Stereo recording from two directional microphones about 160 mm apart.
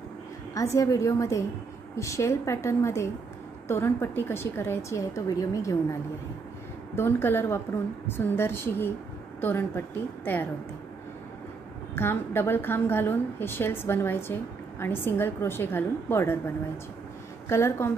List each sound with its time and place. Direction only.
0.6 s a woman's voice: 20° left (ahead or behind)
7.0 s a woman's voice: 15° left (ahead or behind)
11.9 s a woman's voice: 15° left (ahead or behind)